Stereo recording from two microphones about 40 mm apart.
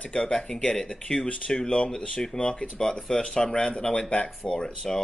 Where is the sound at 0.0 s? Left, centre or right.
Left.